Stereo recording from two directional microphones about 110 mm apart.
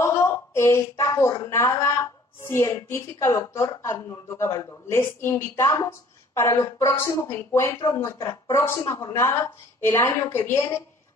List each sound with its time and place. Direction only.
0.0 s a woman's voice: 25° left (ahead or behind)